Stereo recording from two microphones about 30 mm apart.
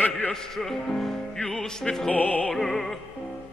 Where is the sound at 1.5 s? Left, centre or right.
Left.